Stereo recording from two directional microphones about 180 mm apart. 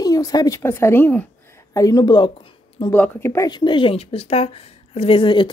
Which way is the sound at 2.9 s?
10° left (ahead or behind).